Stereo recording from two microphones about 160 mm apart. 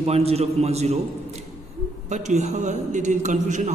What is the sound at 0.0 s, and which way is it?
A man's voice, 40° right (ahead or behind).